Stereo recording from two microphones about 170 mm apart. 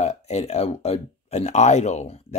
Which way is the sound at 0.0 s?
40° left (ahead or behind).